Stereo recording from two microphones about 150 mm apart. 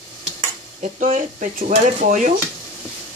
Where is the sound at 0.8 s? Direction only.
60° right (ahead or behind).